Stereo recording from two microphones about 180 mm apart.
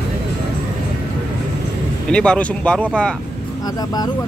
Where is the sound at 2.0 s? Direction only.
5° left (ahead or behind).